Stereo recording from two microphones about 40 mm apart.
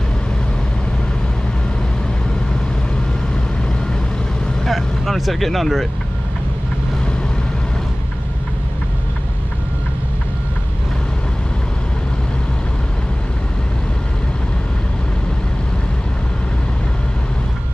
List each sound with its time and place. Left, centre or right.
4.6 s vehicle: centre